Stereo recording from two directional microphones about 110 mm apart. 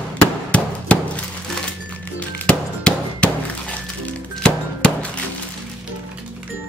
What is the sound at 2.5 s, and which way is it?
Music, 10° left (ahead or behind).